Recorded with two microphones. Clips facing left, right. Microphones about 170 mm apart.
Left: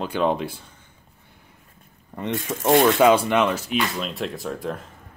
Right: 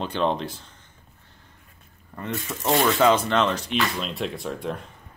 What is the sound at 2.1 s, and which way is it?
Speech, 20° left (ahead or behind).